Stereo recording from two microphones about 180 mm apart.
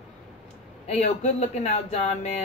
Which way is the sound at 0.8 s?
40° left (ahead or behind).